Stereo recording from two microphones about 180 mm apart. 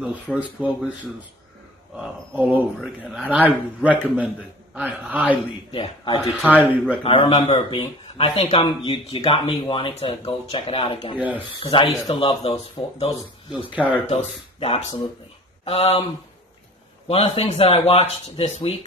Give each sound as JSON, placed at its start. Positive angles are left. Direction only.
{"t": 0.0, "sound": "a man's voice", "side_deg": -5}
{"t": 2.4, "sound": "a man's voice", "side_deg": -10}
{"t": 5.7, "sound": "a man's voice", "side_deg": 30}
{"t": 6.4, "sound": "a man's voice", "side_deg": -10}
{"t": 7.0, "sound": "a man's voice", "side_deg": 30}
{"t": 17.1, "sound": "a man's voice", "side_deg": 35}